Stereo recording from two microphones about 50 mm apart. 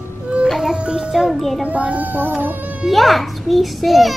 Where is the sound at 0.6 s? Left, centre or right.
Centre.